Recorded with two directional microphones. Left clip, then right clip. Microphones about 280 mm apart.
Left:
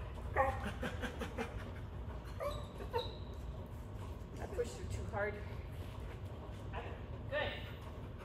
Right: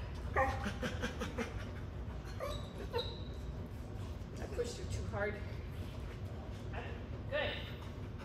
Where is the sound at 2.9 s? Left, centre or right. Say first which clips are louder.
Even; centre.